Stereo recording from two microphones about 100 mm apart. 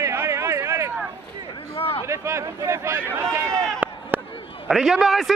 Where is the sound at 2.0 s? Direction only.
30° right (ahead or behind).